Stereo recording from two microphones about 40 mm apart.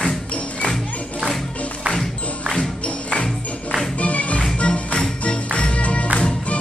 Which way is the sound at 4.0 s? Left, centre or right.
Left.